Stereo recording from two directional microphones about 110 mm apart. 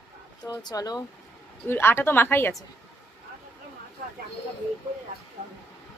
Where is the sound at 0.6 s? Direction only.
35° left (ahead or behind).